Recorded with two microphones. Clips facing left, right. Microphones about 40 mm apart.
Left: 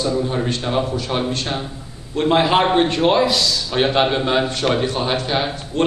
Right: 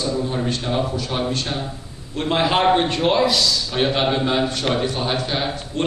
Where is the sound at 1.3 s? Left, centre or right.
Left.